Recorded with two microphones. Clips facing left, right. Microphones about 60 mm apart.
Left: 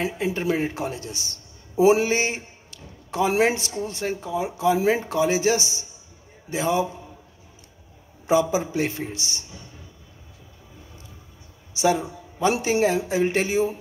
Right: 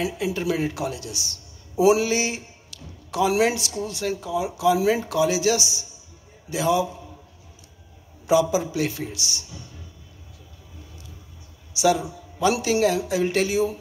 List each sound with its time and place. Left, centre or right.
0.0 s a man's voice: left
8.3 s a man's voice: left
11.7 s a man's voice: left